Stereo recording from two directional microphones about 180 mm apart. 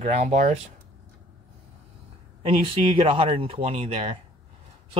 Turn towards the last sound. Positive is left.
turn(degrees=-35)  # may be behind; listen again after turning